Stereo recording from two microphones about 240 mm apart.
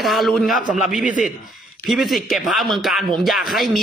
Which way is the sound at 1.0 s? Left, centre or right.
Left.